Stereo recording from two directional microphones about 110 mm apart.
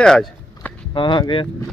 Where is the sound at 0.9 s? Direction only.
45° left (ahead or behind).